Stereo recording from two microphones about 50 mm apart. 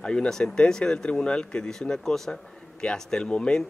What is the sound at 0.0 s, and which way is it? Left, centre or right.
Speech, centre.